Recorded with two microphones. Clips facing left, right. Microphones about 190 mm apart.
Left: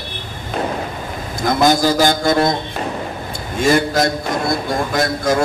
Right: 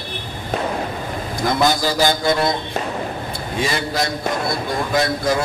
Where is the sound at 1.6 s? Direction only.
45° left (ahead or behind).